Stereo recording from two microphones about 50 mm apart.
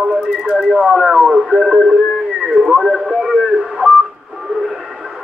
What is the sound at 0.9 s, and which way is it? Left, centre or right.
Radio, centre.